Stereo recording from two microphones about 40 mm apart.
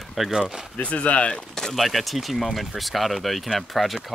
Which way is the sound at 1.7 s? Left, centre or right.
Centre.